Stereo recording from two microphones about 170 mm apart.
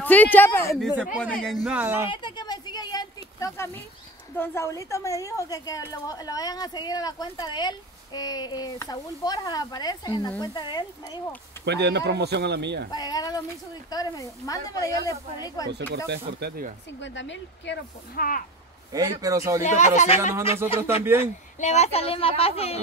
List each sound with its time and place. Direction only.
0.0 s a man's voice: 10° left (ahead or behind)
0.7 s speech: centre (ahead or behind)
2.0 s a sound: 25° left (ahead or behind)
4.4 s a woman's voice: 15° left (ahead or behind)
11.6 s speech: 85° right
12.9 s a woman's voice: 20° left (ahead or behind)
15.7 s speech: 85° right; by 16.7 s 65° right (ahead or behind)
17.0 s speech: 90° left; by 18.4 s 55° left (ahead or behind)
18.9 s a man's voice: 20° right (ahead or behind)
19.6 s speech: 45° left (ahead or behind)